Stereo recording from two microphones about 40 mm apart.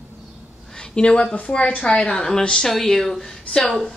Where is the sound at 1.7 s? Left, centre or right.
Left.